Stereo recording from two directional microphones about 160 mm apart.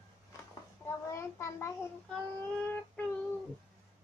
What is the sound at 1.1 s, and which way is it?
Speech, 20° left (ahead or behind).